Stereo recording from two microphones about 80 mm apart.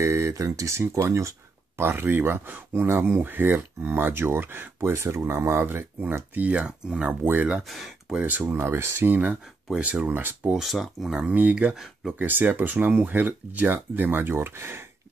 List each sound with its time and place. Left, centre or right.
0.0 s speech: right; by 7.6 s centre
7.6 s speech: centre
8.1 s speech: centre; by 9.1 s right
9.1 s speech: centre
10.5 s speech: centre
11.2 s speech: centre
11.7 s speech: centre
12.2 s speech: right